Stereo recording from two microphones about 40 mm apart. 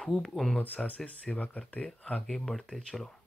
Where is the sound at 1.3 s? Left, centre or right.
Left.